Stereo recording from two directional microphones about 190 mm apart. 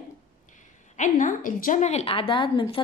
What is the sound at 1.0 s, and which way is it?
A woman's voice, 40° left (ahead or behind).